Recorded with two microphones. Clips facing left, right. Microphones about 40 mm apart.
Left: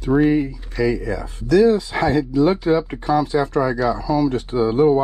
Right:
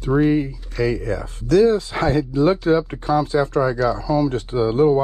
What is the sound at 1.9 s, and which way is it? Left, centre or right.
Speech, left.